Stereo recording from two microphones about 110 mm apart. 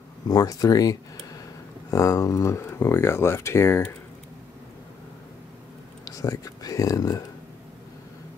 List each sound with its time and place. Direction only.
0.3 s speech: 35° left (ahead or behind)
6.0 s speech: 35° left (ahead or behind)